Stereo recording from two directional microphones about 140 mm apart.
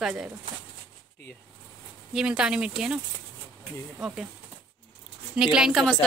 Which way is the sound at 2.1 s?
5° right (ahead or behind).